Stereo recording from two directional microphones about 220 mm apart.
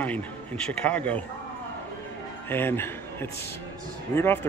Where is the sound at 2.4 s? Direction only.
10° left (ahead or behind).